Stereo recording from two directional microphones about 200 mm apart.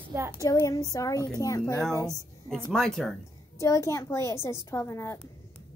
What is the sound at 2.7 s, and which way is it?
Speech, centre (ahead or behind).